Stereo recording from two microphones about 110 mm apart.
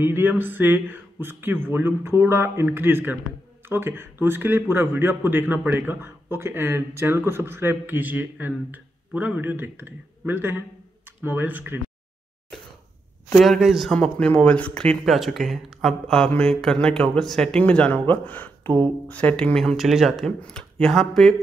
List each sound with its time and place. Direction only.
0.0 s speech: 20° right (ahead or behind)
13.3 s speech: centre (ahead or behind)
13.9 s speech: 10° left (ahead or behind)
20.3 s speech: 10° left (ahead or behind)